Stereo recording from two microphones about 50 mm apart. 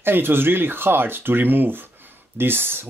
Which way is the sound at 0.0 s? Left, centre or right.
Right.